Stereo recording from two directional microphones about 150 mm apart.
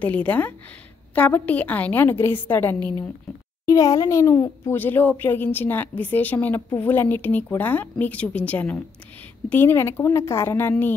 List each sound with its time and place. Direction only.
0.0 s a woman's voice: 10° left (ahead or behind)